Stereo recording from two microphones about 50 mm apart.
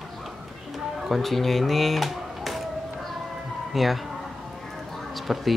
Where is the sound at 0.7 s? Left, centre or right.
Centre.